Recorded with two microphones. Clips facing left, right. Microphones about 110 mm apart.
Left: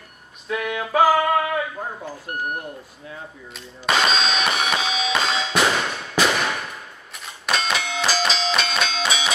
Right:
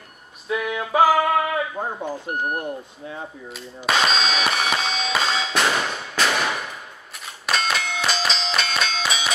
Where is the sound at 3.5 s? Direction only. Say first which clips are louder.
Even; centre (ahead or behind).